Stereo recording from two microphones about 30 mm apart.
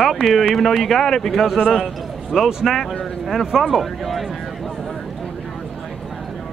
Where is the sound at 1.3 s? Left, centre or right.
Centre.